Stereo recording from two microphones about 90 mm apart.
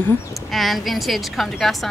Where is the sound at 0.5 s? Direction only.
Centre (ahead or behind).